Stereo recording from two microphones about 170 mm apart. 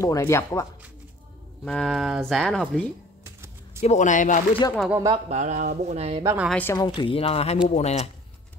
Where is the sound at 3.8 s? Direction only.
40° left (ahead or behind).